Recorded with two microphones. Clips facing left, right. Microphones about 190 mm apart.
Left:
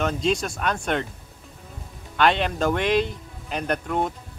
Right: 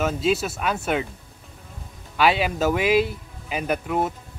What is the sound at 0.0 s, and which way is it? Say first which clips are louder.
Speech: right 1 dB; 5° right (ahead or behind).